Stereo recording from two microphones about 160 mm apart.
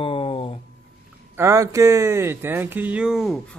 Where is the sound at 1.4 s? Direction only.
20° right (ahead or behind).